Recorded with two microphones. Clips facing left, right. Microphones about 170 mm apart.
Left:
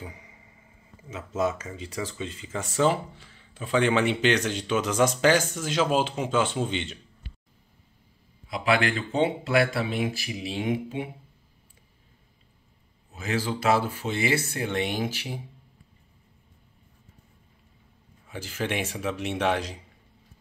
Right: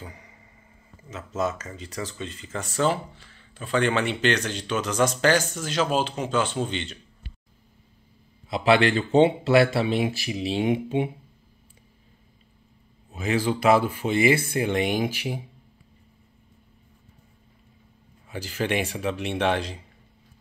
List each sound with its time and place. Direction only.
0.0 s a sound: 5° left (ahead or behind)
1.0 s speech: 10° left (ahead or behind)
8.5 s speech: 25° right (ahead or behind)
13.1 s speech: 20° right (ahead or behind)
18.3 s speech: centre (ahead or behind)